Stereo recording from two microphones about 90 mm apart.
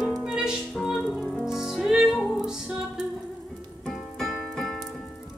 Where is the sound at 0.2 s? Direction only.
5° right (ahead or behind).